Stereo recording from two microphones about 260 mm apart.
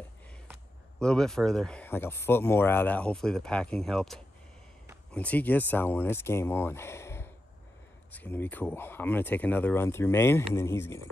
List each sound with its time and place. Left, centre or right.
0.5 s speech: centre